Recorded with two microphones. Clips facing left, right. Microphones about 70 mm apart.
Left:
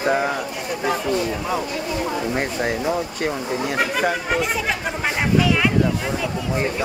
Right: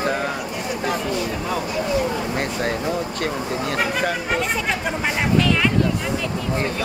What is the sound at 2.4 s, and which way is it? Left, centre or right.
Speech, centre.